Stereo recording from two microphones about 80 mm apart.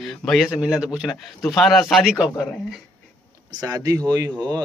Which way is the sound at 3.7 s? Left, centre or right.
Right.